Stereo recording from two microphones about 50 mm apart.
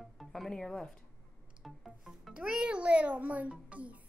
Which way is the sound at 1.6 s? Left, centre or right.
Centre.